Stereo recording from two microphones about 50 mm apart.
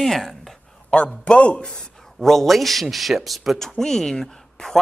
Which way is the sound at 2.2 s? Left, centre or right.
Centre.